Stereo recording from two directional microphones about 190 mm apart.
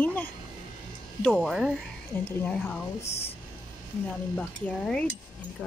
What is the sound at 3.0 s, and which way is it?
Speech, 30° left (ahead or behind).